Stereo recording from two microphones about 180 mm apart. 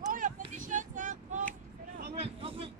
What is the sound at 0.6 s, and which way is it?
Female singing, 45° right (ahead or behind).